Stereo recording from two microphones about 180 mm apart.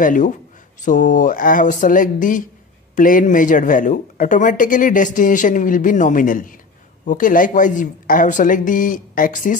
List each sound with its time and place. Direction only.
0.0 s speech: 45° left (ahead or behind)